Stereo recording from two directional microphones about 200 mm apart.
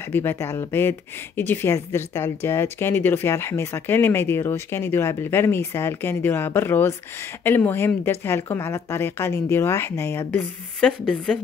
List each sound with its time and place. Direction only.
0.1 s speech: 10° left (ahead or behind)